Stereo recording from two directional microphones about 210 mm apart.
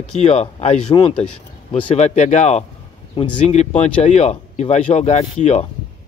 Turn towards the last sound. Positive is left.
turn(degrees=30)  # may be behind; listen again after turning